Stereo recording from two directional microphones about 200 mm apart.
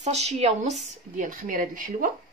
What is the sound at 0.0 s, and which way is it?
Speech, 35° right (ahead or behind).